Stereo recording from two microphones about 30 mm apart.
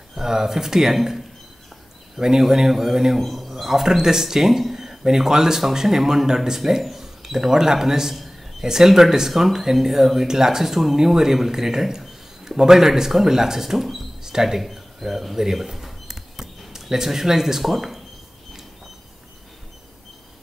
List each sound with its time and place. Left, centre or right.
0.1 s speech: centre
3.2 s speech: centre
14.6 s a sound: centre